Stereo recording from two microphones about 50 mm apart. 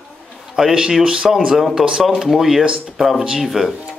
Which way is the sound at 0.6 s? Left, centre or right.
Centre.